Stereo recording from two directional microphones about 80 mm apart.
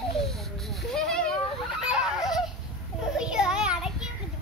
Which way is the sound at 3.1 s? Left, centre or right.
Centre.